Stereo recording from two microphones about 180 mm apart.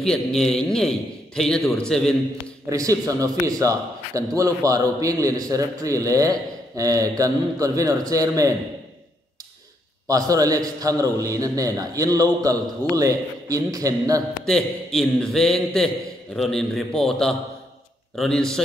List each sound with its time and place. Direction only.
0.0 s a man's voice: centre (ahead or behind)
2.6 s a man's voice: 20° right (ahead or behind)
10.0 s a man's voice: 20° right (ahead or behind)
14.4 s a man's voice: centre (ahead or behind)